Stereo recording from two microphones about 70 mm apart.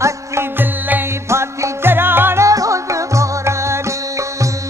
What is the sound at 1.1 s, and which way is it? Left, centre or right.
Music, right.